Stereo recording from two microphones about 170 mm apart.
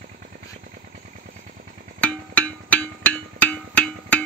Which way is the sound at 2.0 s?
10° left (ahead or behind).